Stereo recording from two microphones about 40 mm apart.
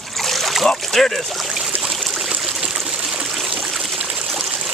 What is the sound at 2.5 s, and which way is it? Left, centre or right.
Stream, centre.